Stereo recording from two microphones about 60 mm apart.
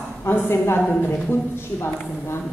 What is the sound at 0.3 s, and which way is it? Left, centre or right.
A woman's voice, left.